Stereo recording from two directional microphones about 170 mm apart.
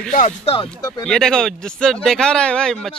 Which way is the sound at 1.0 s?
5° left (ahead or behind).